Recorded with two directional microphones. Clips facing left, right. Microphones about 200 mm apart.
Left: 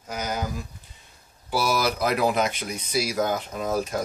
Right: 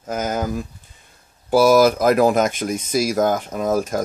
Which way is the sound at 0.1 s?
50° right (ahead or behind).